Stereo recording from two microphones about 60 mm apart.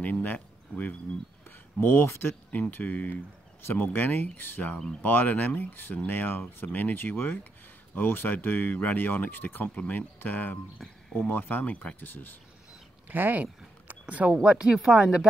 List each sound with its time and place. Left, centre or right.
0.0 s speech: left
1.8 s speech: left
2.7 s speech: left
13.1 s speech: right